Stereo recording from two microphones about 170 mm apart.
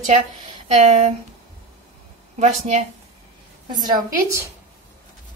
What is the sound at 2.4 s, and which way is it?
Speech, 40° right (ahead or behind).